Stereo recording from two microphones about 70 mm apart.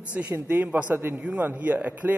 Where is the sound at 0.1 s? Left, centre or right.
Right.